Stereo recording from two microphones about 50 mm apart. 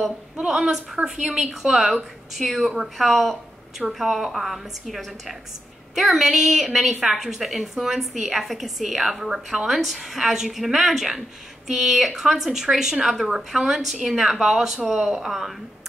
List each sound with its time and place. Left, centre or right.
0.6 s a woman's voice: centre
15.0 s a woman's voice: centre